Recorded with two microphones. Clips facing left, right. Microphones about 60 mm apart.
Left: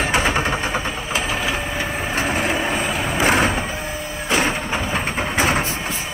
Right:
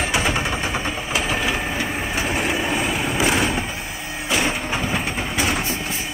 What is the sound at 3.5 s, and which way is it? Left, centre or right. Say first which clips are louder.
Music: left 2 dB; centre.